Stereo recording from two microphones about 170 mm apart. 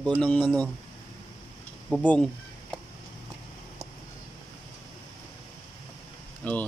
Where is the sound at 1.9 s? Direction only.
5° left (ahead or behind).